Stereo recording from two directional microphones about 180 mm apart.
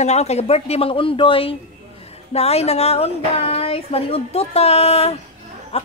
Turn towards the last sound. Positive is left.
turn(degrees=35)  # may be behind; listen again after turning